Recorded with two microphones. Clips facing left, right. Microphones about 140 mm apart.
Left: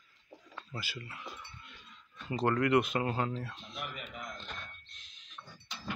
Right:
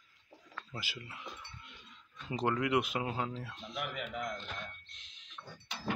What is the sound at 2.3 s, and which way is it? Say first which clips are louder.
Speech: left 3 dB; 10° right (ahead or behind).